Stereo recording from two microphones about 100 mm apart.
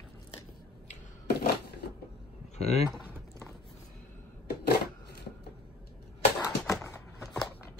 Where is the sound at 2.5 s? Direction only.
90° left.